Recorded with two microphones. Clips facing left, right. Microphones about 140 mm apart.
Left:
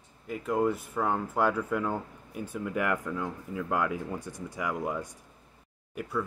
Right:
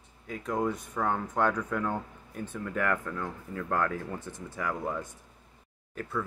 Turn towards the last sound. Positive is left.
turn(degrees=10)  # may be behind; listen again after turning